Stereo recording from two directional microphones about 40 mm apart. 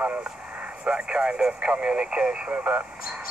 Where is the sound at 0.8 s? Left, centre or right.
Right.